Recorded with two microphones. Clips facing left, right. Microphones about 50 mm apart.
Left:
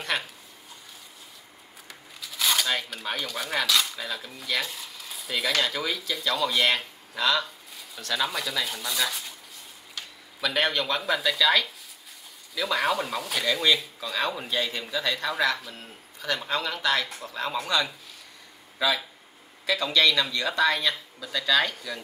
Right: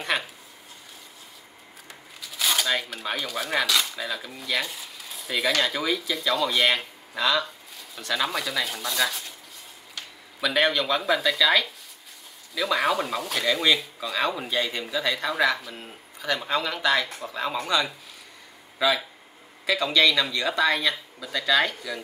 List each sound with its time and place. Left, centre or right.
2.2 s speech: centre